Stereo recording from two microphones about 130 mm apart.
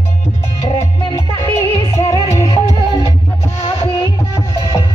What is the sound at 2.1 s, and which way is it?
Music, 20° left (ahead or behind).